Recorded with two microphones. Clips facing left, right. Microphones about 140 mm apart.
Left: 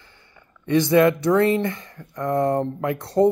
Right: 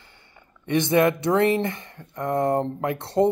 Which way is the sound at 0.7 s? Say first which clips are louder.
Left 3 dB; 20° right (ahead or behind).